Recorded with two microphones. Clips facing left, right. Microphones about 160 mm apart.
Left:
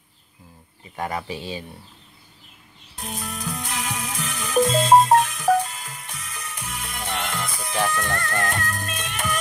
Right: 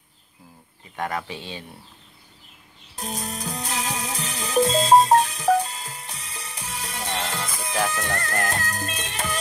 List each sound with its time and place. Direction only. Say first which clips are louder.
0.9 s speech: left 1 dB; 5° left (ahead or behind)
3.0 s music: right 1 dB; 35° right (ahead or behind)